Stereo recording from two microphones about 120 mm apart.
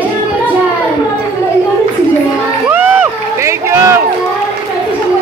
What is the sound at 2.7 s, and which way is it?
Crowd, 15° right (ahead or behind).